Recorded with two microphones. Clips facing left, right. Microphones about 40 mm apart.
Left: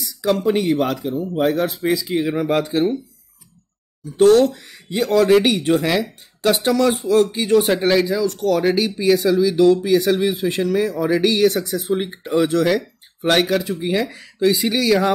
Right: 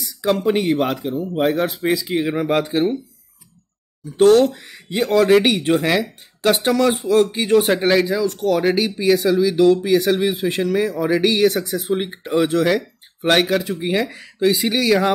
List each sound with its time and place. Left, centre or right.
0.2 s speech: right
4.2 s speech: centre
4.5 s speech: right
5.9 s speech: centre
13.7 s speech: centre